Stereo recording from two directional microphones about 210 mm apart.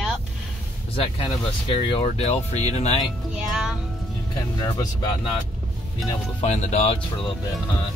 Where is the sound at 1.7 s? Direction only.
25° left (ahead or behind).